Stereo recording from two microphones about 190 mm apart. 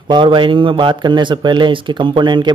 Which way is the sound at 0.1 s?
25° right (ahead or behind).